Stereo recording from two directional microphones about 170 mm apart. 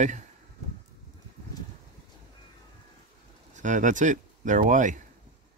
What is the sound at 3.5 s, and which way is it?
Speech, 45° right (ahead or behind).